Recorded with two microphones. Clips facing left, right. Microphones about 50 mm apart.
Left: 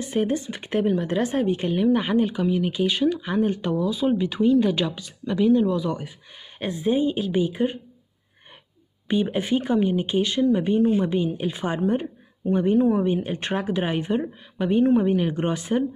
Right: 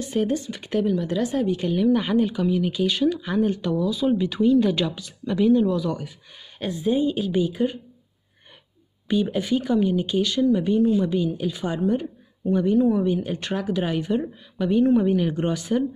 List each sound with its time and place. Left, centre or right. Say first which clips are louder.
0.0 s speech: even; centre
0.8 s speech: left 2 dB; left
9.0 s speech: even; left